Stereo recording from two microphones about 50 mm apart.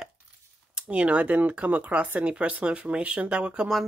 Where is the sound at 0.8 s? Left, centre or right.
Right.